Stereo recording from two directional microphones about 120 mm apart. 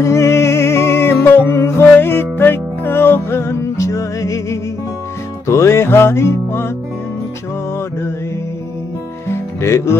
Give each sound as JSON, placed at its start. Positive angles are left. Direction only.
{"t": 0.0, "sound": "music", "side_deg": 25}
{"t": 9.3, "sound": "music", "side_deg": 25}